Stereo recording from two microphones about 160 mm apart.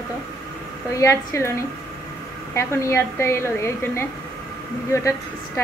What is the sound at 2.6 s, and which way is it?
A woman's voice, 15° left (ahead or behind).